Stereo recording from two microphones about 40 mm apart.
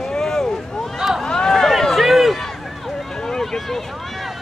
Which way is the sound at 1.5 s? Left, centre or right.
Centre.